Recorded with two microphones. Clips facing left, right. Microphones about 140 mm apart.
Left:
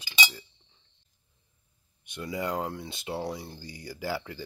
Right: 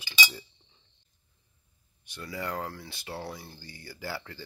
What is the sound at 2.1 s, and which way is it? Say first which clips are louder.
Speech: left 4 dB; 20° left (ahead or behind).